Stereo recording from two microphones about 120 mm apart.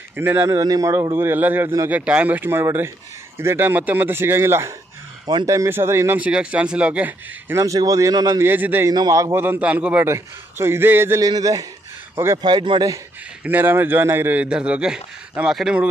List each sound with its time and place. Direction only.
0.1 s a man's voice: 15° right (ahead or behind)
0.6 s speech: 30° right (ahead or behind)
1.1 s a man's voice: 15° right (ahead or behind)
5.2 s speech: 40° right (ahead or behind)
5.5 s a man's voice: 25° right (ahead or behind)
6.1 s a man's voice: 10° right (ahead or behind)
7.6 s a man's voice: 30° right (ahead or behind)
8.9 s a man's voice: 30° right (ahead or behind)
11.2 s speech: 30° right (ahead or behind)
13.4 s a man's voice: 15° right (ahead or behind)